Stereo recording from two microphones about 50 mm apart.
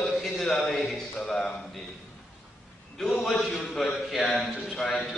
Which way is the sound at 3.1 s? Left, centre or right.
Centre.